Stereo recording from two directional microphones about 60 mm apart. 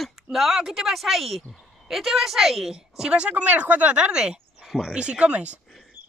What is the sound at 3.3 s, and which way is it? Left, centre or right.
Speech, right.